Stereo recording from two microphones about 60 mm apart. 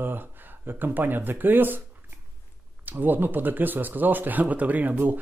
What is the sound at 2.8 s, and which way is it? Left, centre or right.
Speech, right.